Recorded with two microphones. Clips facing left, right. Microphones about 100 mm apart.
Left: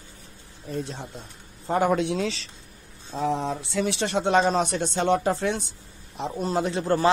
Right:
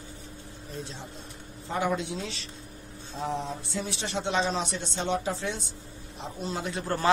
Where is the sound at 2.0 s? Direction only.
90° left; by 5.6 s 60° left (ahead or behind).